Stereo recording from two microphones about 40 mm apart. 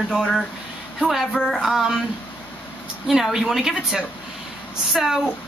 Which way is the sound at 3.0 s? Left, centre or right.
Centre.